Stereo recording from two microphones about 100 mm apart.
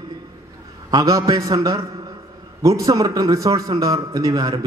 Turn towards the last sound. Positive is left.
turn(degrees=-40)  # may be behind; listen again after turning